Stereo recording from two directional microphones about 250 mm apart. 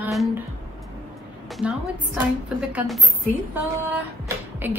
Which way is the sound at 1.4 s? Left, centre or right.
Centre.